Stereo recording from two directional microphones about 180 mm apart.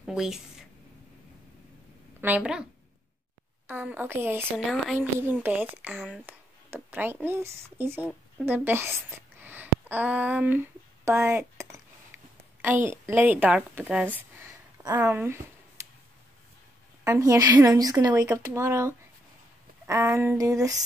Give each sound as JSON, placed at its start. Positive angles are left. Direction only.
{"t": 0.0, "sound": "a woman's voice", "side_deg": 0}
{"t": 2.2, "sound": "speech", "side_deg": -5}
{"t": 4.5, "sound": "speech", "side_deg": 5}
{"t": 4.9, "sound": "speech", "side_deg": -10}
{"t": 8.5, "sound": "a sound", "side_deg": -10}
{"t": 12.6, "sound": "speech", "side_deg": -10}
{"t": 17.0, "sound": "a woman's voice", "side_deg": -15}